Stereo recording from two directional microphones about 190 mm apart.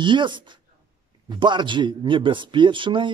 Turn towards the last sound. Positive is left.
turn(degrees=-25)  # may be behind; listen again after turning